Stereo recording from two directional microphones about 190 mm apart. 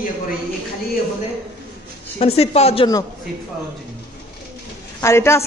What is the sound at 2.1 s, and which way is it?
Speech, 30° left (ahead or behind).